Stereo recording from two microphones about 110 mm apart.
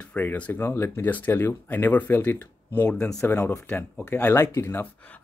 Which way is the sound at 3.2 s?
20° left (ahead or behind).